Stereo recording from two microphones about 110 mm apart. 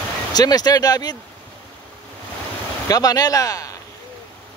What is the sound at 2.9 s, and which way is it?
Speech, 35° left (ahead or behind).